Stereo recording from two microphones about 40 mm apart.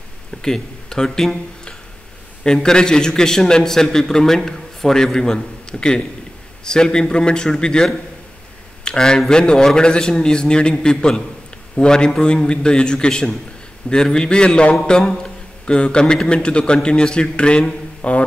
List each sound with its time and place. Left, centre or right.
0.4 s speech: centre
2.4 s a man's voice: centre